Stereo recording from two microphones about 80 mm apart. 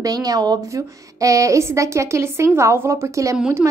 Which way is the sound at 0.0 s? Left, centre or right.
Right.